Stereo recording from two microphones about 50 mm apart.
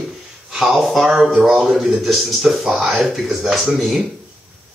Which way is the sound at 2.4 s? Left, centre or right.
Centre.